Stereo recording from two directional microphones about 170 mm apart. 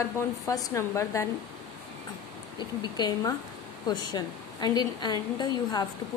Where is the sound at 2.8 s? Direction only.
25° left (ahead or behind).